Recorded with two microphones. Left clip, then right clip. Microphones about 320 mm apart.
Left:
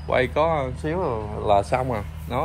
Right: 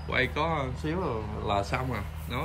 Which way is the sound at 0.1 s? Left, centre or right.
Centre.